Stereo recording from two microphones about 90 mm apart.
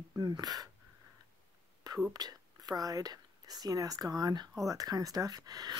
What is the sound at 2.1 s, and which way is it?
Speech, 45° right (ahead or behind).